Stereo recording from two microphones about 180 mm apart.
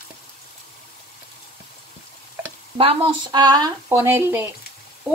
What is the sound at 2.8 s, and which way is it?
Speech, 30° right (ahead or behind).